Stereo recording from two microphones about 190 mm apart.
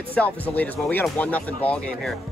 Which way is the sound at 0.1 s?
10° left (ahead or behind).